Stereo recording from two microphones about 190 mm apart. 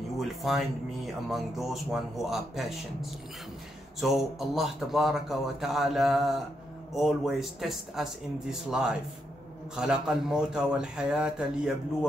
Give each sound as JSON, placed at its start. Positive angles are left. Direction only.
{"t": 0.2, "sound": "speech", "side_deg": 0}